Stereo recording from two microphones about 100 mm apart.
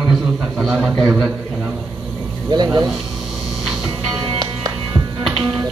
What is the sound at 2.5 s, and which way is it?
Speech, 45° right (ahead or behind).